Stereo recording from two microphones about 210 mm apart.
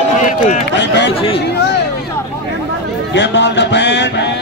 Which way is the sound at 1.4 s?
50° left (ahead or behind).